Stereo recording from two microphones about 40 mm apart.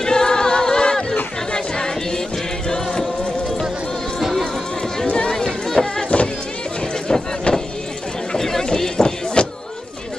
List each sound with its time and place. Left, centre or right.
0.0 s a capella: centre
2.7 s music: centre
4.2 s music: centre
5.0 s run: left
5.3 s run: centre
7.1 s vehicle: centre
8.3 s a sound: centre